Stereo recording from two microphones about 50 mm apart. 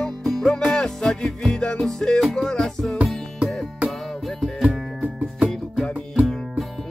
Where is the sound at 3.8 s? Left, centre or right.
Centre.